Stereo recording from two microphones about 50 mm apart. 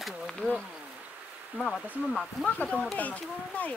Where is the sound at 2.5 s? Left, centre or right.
Left.